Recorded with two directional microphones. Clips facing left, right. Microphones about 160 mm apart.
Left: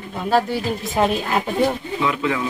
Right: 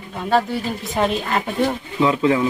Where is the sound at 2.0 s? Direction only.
30° right (ahead or behind).